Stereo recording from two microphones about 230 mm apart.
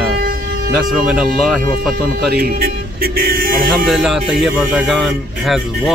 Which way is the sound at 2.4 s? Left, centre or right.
Right.